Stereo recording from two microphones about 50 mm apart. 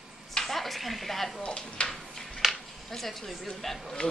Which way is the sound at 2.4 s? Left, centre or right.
Centre.